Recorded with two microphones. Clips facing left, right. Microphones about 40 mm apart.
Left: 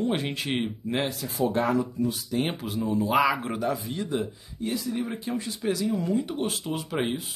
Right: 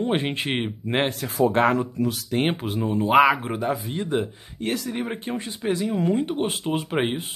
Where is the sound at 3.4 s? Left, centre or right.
Right.